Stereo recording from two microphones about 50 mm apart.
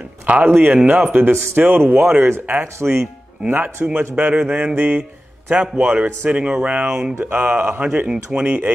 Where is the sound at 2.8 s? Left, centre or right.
Right.